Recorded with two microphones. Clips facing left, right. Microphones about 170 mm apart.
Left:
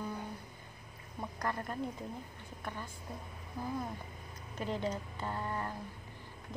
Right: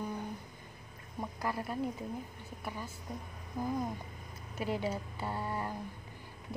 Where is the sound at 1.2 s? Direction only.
5° right (ahead or behind).